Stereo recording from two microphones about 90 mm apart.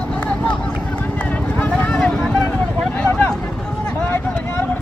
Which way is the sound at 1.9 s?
5° left (ahead or behind).